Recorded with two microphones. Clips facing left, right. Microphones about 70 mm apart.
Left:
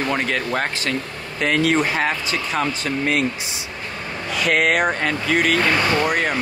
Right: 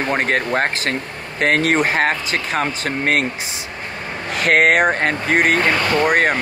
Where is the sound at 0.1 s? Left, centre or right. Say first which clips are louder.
Right 7 dB; right.